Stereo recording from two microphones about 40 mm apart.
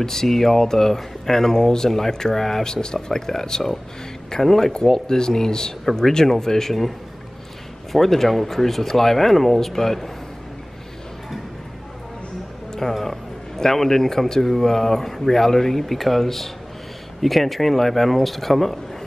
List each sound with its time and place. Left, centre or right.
0.0 s speech: centre
7.9 s speech: centre
12.9 s speech: centre